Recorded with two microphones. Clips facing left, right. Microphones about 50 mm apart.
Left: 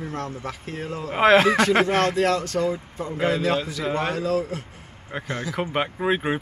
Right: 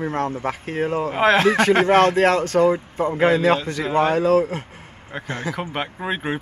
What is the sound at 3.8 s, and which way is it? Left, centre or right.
Speech, centre.